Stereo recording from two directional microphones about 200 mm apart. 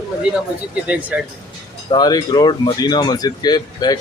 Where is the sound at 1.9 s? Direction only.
20° left (ahead or behind).